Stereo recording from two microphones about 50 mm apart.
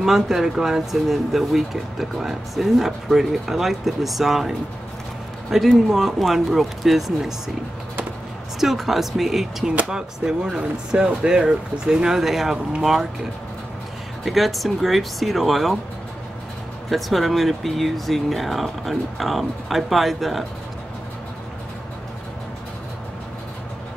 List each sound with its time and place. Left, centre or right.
0.0 s speech: centre
8.5 s speech: centre
14.2 s speech: centre
16.9 s speech: centre